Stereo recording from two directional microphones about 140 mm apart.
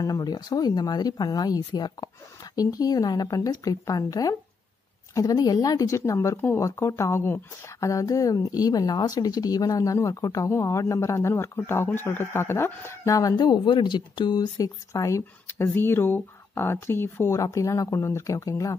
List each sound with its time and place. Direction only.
0.0 s a woman's voice: 25° left (ahead or behind)